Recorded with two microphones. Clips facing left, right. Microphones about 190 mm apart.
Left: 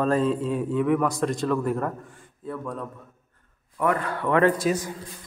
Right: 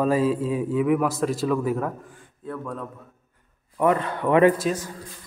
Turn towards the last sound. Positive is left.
turn(degrees=-15)  # may be behind; listen again after turning